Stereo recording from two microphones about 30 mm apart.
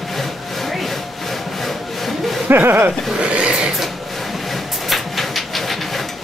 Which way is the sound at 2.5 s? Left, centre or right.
Right.